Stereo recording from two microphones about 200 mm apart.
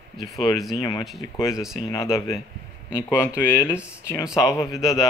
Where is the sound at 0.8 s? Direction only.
15° left (ahead or behind).